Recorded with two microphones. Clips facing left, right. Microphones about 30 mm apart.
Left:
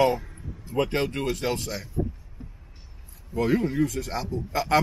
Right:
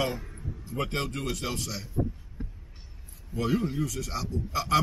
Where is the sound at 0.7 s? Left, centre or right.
Left.